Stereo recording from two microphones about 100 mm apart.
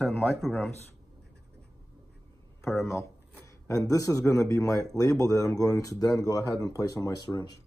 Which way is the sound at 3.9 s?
35° left (ahead or behind).